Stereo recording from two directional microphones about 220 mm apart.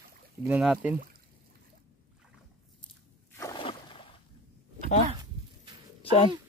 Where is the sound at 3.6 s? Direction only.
25° left (ahead or behind).